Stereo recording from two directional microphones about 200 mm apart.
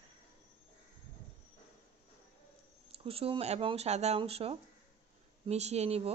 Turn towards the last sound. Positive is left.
turn(degrees=-30)  # may be behind; listen again after turning